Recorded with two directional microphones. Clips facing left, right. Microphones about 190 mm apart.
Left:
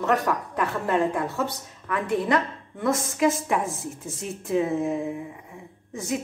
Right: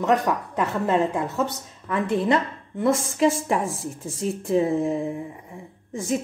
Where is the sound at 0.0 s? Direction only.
20° right (ahead or behind).